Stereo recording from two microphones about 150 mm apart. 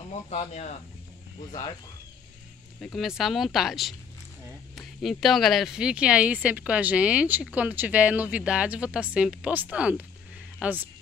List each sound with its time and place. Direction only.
0.1 s speech: 50° left (ahead or behind)
2.8 s speech: centre (ahead or behind)